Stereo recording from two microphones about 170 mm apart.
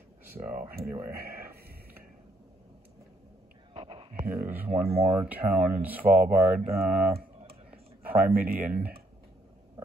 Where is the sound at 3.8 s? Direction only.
30° right (ahead or behind).